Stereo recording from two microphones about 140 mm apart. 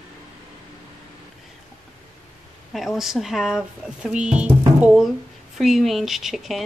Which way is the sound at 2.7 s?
Centre (ahead or behind).